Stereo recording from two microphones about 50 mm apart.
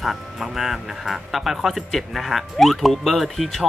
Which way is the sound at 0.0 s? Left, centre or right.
Centre.